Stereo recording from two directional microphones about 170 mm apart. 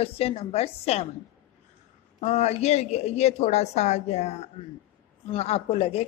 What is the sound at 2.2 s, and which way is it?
A woman's voice, 40° left (ahead or behind).